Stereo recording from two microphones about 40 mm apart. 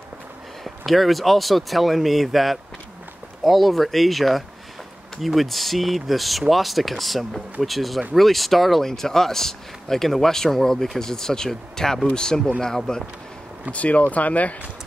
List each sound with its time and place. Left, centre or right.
0.7 s a man's voice: centre
13.7 s speech: left